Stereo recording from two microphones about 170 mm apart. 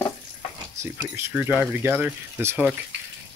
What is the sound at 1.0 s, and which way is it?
Speech, 15° right (ahead or behind).